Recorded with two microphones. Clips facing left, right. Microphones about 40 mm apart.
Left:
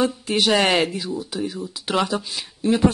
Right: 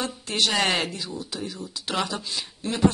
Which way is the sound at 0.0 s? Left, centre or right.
Centre.